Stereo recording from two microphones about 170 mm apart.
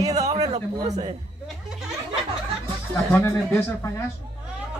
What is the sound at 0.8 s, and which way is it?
Speech, 40° right (ahead or behind).